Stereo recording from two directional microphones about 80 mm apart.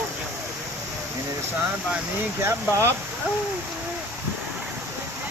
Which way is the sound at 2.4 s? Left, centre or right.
Right.